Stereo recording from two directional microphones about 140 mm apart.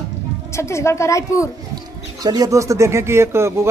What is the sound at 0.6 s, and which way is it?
Speech, 20° left (ahead or behind).